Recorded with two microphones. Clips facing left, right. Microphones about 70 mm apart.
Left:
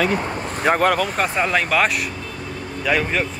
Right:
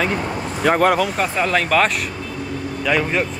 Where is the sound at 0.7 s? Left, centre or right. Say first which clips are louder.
Right 2 dB; right.